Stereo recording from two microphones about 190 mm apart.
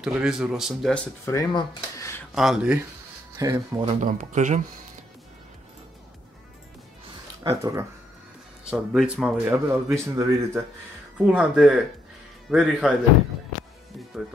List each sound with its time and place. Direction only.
0.0 s speech: 5° right (ahead or behind)
1.2 s speech: 15° left (ahead or behind)
2.3 s speech: centre (ahead or behind)
3.3 s speech: 20° right (ahead or behind)
3.8 s speech: 40° right (ahead or behind)
7.4 s speech: 15° right (ahead or behind)
8.6 s speech: 5° right (ahead or behind)
9.9 s speech: 15° right (ahead or behind)